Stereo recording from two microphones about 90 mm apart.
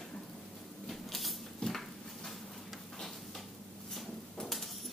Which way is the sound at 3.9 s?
5° left (ahead or behind).